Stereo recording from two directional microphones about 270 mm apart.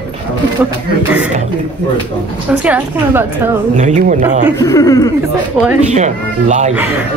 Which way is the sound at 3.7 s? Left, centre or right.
Right.